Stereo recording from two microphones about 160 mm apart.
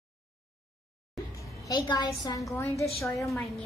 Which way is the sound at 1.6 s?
25° left (ahead or behind).